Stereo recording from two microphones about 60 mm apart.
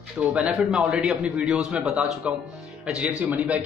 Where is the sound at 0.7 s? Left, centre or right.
Centre.